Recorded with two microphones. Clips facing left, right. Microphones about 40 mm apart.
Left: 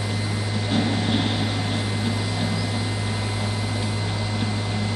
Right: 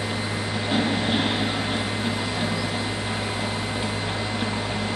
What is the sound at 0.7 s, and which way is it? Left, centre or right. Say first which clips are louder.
Vehicle: even; centre.